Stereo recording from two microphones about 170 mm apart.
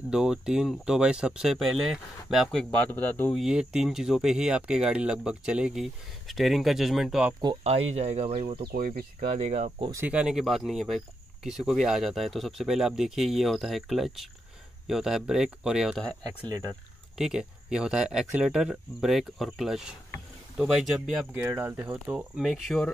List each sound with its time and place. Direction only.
0.1 s speech: 5° right (ahead or behind)
3.3 s speech: 5° right (ahead or behind)
7.6 s speech: 40° right (ahead or behind)
8.5 s speech: 60° right (ahead or behind)
9.4 s speech: 40° right (ahead or behind)
10.0 s speech: 5° right (ahead or behind)
17.2 s speech: 5° right (ahead or behind)
22.4 s speech: centre (ahead or behind)